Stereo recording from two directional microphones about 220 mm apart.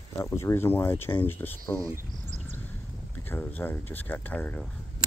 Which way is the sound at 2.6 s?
10° left (ahead or behind).